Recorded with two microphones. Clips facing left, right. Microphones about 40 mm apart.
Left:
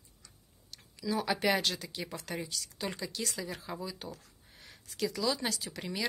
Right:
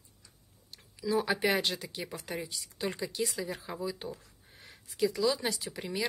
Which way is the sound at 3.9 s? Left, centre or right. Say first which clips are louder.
Right 4 dB; right.